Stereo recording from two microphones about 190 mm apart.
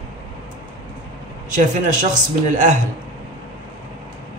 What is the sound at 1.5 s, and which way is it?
A man's voice, 40° right (ahead or behind).